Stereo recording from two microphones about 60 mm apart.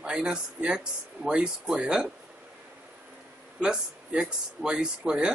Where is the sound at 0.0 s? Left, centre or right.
Centre.